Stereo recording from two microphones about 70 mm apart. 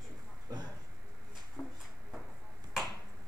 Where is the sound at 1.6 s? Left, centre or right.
Left.